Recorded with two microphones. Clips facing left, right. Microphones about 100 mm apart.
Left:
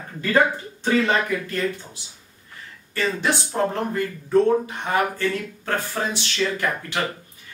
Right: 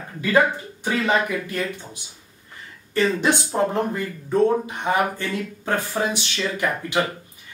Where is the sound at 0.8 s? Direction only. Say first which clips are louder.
Left 1 dB; 15° right (ahead or behind).